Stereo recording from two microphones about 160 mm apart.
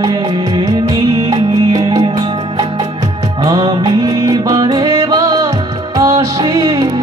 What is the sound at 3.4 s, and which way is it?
Music, 25° right (ahead or behind).